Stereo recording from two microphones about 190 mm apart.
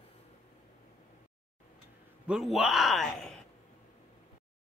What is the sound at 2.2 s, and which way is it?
A man's voice, centre (ahead or behind).